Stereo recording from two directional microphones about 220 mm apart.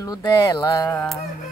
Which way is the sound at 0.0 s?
15° left (ahead or behind).